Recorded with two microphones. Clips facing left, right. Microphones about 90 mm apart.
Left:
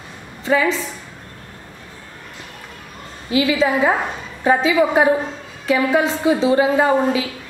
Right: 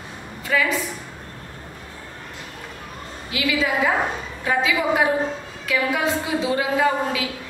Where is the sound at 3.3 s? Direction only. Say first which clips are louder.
Left 6 dB; 30° left (ahead or behind).